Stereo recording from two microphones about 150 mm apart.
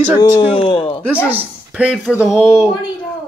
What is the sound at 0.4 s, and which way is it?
Speech, 35° left (ahead or behind).